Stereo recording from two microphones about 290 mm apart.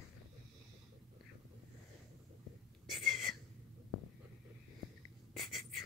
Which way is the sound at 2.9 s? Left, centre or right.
Centre.